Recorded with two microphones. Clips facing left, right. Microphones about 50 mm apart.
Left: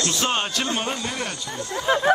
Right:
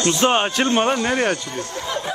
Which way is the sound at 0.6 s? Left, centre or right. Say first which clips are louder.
Right 8 dB; right.